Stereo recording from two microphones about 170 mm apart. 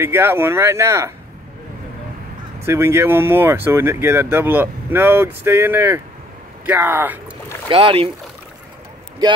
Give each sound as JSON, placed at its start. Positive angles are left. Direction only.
{"t": 0.0, "sound": "speech", "side_deg": -15}
{"t": 2.6, "sound": "speech", "side_deg": -15}
{"t": 7.7, "sound": "speech", "side_deg": -35}